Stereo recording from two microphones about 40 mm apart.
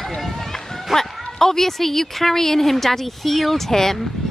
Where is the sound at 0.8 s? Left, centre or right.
Centre.